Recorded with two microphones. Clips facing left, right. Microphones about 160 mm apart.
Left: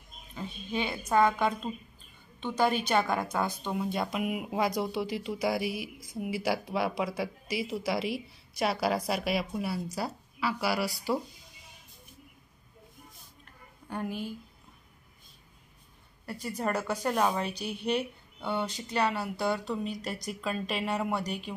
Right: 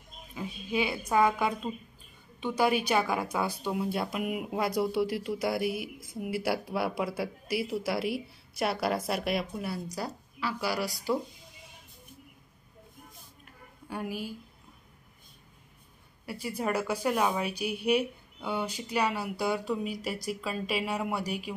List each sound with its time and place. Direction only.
0.3 s a woman's voice: 10° right (ahead or behind)
5.6 s speech: 55° right (ahead or behind)
6.4 s a woman's voice: 5° right (ahead or behind)
13.8 s a woman's voice: 5° right (ahead or behind)
16.3 s a woman's voice: 10° right (ahead or behind)